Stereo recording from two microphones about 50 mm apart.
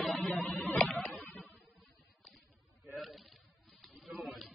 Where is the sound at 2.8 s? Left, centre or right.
Centre.